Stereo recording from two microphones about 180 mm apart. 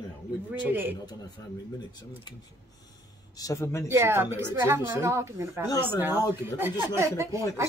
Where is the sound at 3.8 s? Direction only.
15° right (ahead or behind).